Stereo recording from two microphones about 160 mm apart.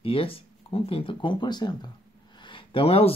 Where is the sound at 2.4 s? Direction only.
35° left (ahead or behind).